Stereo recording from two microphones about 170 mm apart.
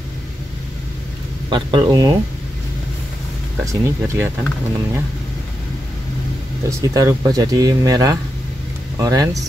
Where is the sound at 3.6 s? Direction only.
20° right (ahead or behind).